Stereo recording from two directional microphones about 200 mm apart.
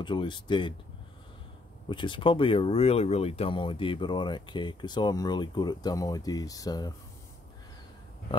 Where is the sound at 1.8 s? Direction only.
25° left (ahead or behind).